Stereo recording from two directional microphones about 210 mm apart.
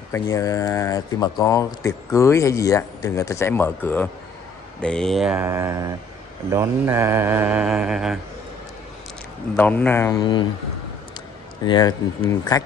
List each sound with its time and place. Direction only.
0.1 s speech: 15° left (ahead or behind)
4.8 s mantra: 5° left (ahead or behind)
9.6 s speech: 10° left (ahead or behind)
11.6 s speech: 20° left (ahead or behind)